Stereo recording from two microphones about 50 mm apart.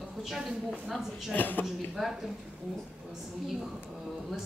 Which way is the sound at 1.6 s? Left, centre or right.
Centre.